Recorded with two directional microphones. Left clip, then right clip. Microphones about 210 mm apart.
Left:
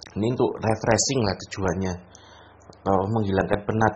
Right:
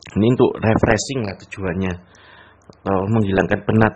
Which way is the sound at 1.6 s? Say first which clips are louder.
Right 4 dB; 25° right (ahead or behind).